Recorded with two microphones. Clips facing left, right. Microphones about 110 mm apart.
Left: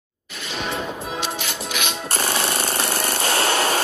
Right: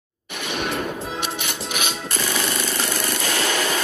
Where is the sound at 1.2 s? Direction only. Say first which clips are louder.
Left 1 dB; 60° right (ahead or behind).